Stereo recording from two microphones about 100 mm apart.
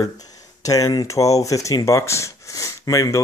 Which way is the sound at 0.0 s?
35° left (ahead or behind).